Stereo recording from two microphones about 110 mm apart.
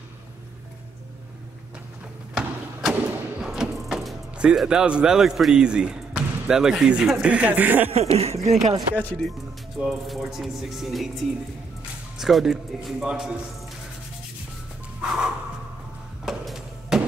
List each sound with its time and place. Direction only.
2.3 s thump: 5° right (ahead or behind)
7.9 s speech: 70° right (ahead or behind)
9.8 s speech: centre (ahead or behind)
15.0 s a sound: 5° right (ahead or behind)